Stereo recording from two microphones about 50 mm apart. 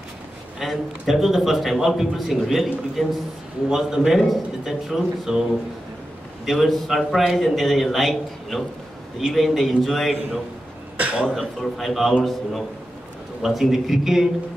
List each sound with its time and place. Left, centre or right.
0.6 s a man's voice: centre
6.4 s a man's voice: centre
11.0 s a sound: right
11.8 s a man's voice: centre
13.4 s a man's voice: centre